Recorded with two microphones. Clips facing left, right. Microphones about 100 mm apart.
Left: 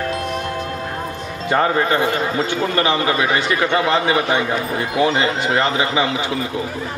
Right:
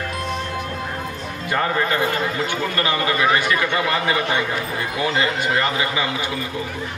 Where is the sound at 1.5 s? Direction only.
30° left (ahead or behind).